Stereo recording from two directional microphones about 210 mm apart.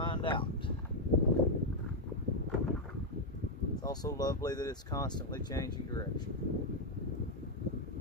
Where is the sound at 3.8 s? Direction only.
20° left (ahead or behind).